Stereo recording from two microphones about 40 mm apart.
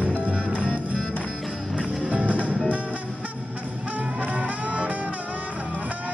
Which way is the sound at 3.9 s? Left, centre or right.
Right.